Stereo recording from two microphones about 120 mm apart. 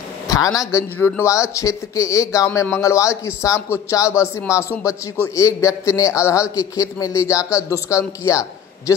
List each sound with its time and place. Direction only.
0.3 s a man's voice: 30° left (ahead or behind)